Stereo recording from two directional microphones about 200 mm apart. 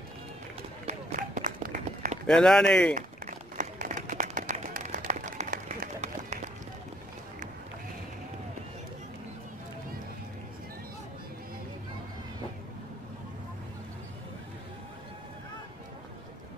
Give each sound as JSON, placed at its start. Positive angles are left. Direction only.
{"t": 0.8, "sound": "run", "side_deg": -35}
{"t": 2.2, "sound": "speech", "side_deg": 5}
{"t": 2.9, "sound": "a sound", "side_deg": -40}